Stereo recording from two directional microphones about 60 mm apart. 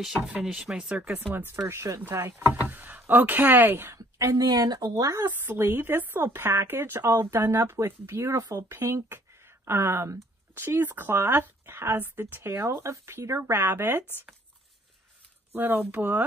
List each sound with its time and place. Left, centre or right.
0.0 s speech: centre
1.3 s speech: right
2.5 s speech: right
3.9 s speech: right
5.4 s speech: right
8.3 s speech: right
10.5 s speech: right
15.5 s speech: right